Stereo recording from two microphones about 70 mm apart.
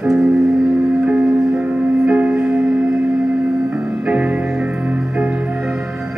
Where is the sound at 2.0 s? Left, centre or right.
Centre.